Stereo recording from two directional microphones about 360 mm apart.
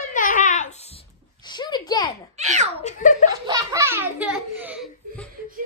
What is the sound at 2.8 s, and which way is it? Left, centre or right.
Speech, left.